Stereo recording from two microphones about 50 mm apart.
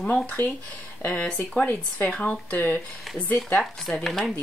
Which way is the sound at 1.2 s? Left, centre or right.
Centre.